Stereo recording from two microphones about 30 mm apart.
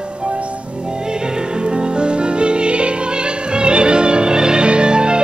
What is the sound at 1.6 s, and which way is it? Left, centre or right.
Music, right.